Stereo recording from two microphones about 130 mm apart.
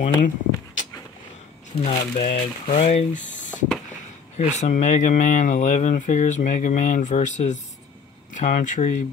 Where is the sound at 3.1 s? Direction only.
75° left (ahead or behind).